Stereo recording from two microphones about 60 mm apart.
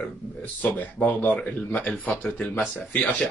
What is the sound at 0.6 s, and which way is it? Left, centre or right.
A man's voice, left.